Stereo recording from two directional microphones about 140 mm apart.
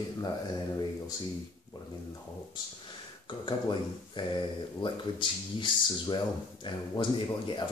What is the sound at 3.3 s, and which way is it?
Speech, 35° left (ahead or behind).